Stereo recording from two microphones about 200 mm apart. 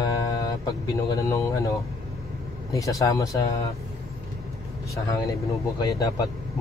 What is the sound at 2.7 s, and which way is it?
Speech, 15° left (ahead or behind).